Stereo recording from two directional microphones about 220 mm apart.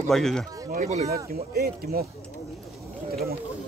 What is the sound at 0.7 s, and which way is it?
Speech, 35° right (ahead or behind).